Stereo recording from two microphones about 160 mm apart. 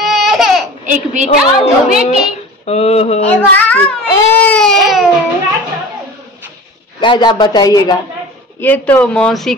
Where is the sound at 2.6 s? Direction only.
40° left (ahead or behind).